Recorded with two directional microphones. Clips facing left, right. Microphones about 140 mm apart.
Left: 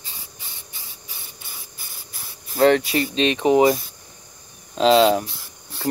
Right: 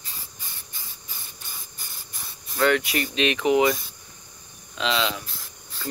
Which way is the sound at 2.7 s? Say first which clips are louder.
Left 5 dB; 35° left (ahead or behind).